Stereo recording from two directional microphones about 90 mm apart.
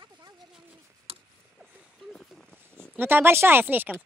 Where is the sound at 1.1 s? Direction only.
90° right.